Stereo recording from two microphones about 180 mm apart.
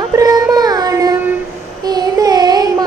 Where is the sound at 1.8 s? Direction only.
20° right (ahead or behind).